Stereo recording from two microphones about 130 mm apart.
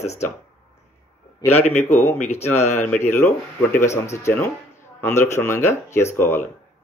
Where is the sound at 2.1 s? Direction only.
65° left (ahead or behind).